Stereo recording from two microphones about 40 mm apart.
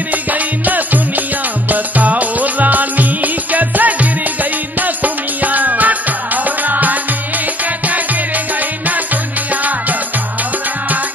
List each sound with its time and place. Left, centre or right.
0.1 s music: right
8.8 s music: right